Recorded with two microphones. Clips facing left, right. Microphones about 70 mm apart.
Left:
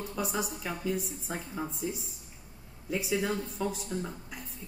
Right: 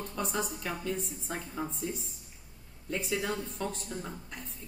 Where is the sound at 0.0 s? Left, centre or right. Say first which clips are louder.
Left 1 dB; centre.